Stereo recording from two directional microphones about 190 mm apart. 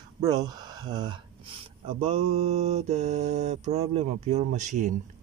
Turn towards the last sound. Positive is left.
turn(degrees=-40)  # may be behind; listen again after turning